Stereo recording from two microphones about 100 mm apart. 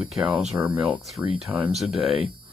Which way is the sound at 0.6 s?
15° right (ahead or behind).